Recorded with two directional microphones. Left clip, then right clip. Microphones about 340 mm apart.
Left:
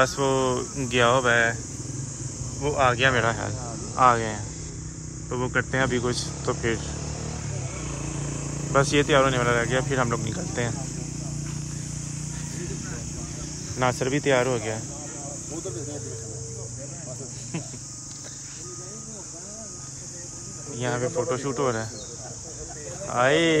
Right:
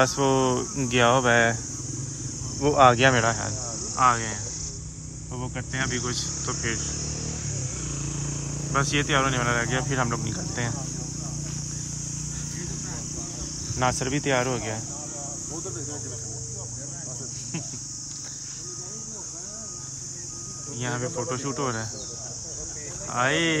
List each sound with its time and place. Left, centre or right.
0.0 s speech: centre
2.6 s speech: right; by 6.8 s centre
8.7 s speech: centre
13.7 s speech: centre
20.8 s speech: centre
23.0 s speech: centre